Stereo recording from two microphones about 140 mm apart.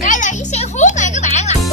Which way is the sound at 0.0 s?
65° left (ahead or behind).